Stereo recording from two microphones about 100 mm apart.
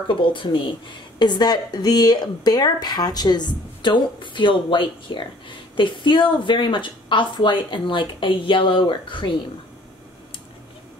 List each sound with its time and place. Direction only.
0.1 s speech: 55° left (ahead or behind)